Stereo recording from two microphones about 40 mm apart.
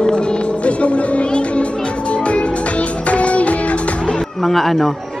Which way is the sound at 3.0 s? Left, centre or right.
Left.